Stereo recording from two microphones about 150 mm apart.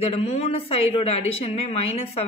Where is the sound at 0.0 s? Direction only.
45° left (ahead or behind).